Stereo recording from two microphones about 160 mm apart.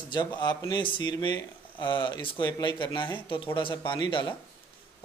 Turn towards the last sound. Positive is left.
turn(degrees=30)  # may be behind; listen again after turning